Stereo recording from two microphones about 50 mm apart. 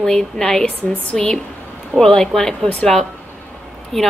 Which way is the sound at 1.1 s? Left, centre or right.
Left.